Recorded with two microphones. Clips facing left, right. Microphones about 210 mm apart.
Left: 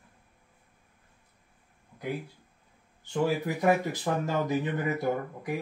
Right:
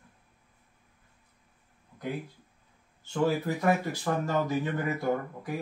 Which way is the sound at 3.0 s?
15° left (ahead or behind).